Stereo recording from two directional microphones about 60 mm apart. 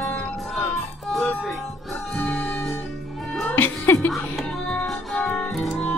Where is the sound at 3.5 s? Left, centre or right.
Left.